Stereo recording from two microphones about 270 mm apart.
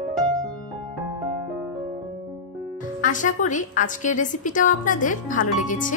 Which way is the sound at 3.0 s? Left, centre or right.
Left.